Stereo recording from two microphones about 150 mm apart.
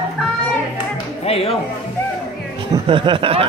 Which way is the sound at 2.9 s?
35° right (ahead or behind).